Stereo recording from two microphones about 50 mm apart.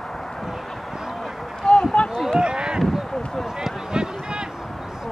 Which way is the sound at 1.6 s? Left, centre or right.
Centre.